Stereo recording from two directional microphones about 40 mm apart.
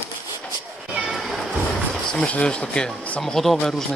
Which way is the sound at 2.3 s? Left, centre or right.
Left.